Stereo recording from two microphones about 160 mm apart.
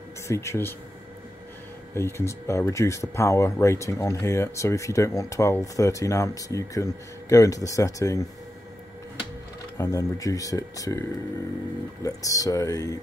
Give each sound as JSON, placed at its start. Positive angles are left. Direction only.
{"t": 0.3, "sound": "speech", "side_deg": 15}
{"t": 2.0, "sound": "speech", "side_deg": 15}
{"t": 9.8, "sound": "speech", "side_deg": 20}